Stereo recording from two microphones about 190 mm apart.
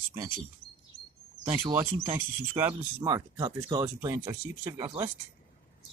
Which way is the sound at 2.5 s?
10° right (ahead or behind).